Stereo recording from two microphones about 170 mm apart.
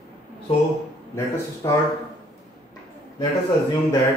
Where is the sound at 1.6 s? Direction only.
20° left (ahead or behind).